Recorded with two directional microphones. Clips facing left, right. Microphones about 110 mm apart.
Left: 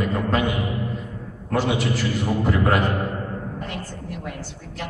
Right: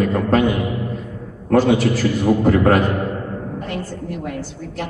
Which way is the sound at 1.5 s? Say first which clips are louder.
Right 8 dB; 45° right (ahead or behind).